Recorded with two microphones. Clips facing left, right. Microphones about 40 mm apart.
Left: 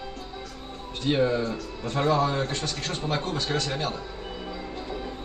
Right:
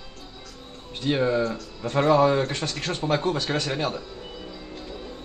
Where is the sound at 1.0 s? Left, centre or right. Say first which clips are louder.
Right 1 dB; centre.